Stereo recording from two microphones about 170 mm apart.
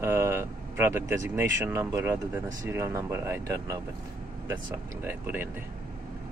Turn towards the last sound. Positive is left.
turn(degrees=-10)  # may be behind; listen again after turning